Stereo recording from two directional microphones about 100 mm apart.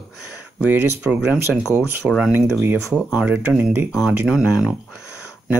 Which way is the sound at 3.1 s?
10° right (ahead or behind).